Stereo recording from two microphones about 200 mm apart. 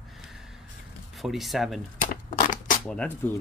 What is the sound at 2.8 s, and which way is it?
Speech, 5° left (ahead or behind).